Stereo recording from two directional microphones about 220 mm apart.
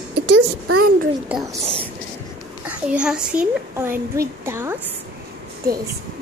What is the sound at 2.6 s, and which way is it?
A child's voice, 5° right (ahead or behind).